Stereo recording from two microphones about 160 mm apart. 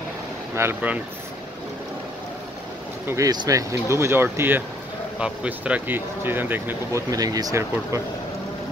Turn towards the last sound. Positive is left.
turn(degrees=-20)  # may be behind; listen again after turning